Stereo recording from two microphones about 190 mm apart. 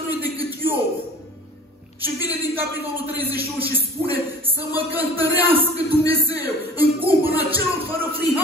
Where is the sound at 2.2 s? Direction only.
10° right (ahead or behind).